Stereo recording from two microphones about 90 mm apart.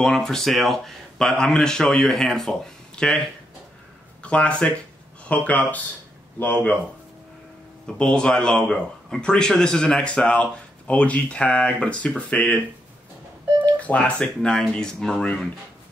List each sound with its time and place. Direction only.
0.0 s a man's voice: 5° left (ahead or behind)
4.2 s speech: 15° left (ahead or behind)
7.8 s speech: 10° left (ahead or behind)
13.7 s speech: 15° left (ahead or behind)